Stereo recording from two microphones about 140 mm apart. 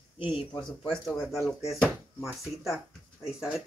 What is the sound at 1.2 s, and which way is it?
Speech, centre (ahead or behind).